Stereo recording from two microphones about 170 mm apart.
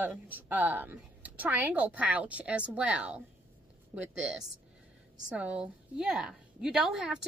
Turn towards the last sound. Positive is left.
turn(degrees=-5)  # may be behind; listen again after turning